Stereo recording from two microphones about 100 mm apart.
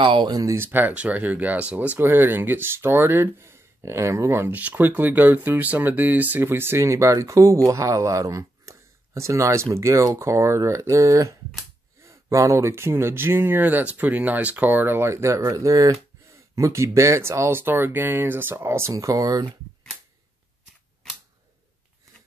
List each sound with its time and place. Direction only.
0.0 s speech: 50° right (ahead or behind)
0.6 s speech: 20° right (ahead or behind); by 19.5 s 40° right (ahead or behind)